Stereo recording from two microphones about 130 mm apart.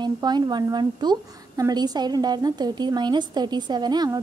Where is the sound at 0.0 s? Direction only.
35° right (ahead or behind).